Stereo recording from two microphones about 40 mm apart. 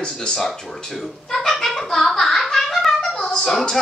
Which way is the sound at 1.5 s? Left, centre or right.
Centre.